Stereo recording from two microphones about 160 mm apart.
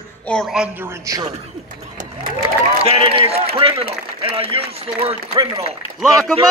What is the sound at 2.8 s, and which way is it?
A man's voice, 35° right (ahead or behind).